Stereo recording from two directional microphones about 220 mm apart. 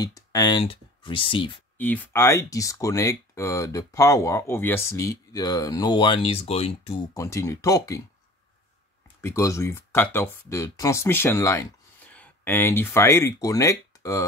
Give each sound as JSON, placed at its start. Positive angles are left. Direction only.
{"t": 0.0, "sound": "speech", "side_deg": 15}
{"t": 1.8, "sound": "speech", "side_deg": 10}
{"t": 9.2, "sound": "speech", "side_deg": 15}